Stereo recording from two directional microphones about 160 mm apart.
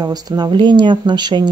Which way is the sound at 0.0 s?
25° right (ahead or behind).